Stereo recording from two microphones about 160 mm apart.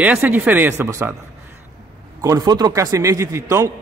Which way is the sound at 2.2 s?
25° right (ahead or behind).